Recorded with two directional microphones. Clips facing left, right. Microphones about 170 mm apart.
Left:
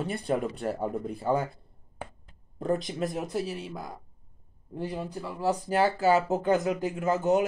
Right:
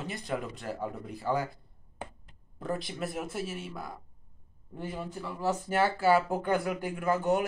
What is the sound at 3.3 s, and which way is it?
Speech, 35° left (ahead or behind).